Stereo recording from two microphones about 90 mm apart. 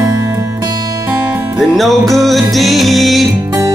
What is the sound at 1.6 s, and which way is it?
Music, centre (ahead or behind).